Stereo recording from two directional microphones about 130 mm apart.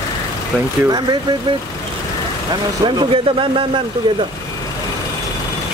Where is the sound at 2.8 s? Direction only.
40° right (ahead or behind).